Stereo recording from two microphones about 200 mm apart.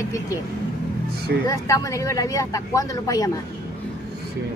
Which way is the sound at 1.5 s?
15° left (ahead or behind).